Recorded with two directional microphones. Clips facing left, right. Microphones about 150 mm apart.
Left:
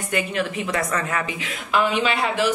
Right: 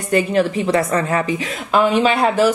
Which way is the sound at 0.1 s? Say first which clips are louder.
Right 9 dB; 35° right (ahead or behind).